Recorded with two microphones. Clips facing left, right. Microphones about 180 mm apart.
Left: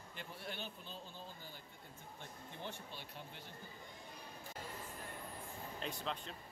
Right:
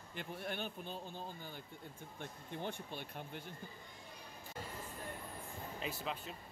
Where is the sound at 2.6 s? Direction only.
55° right (ahead or behind).